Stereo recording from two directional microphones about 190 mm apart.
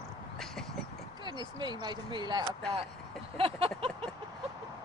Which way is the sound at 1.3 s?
20° right (ahead or behind).